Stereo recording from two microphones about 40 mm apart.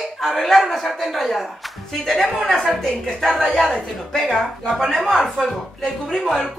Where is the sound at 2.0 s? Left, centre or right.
Centre.